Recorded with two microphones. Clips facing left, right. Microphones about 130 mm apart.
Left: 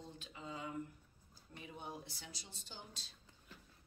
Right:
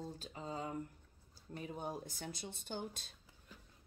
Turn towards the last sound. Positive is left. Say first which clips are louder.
# right 10 dB
turn(degrees=-55)  # may be behind; listen again after turning